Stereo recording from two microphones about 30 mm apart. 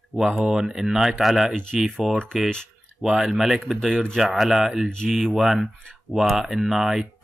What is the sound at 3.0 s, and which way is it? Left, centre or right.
Speech, centre.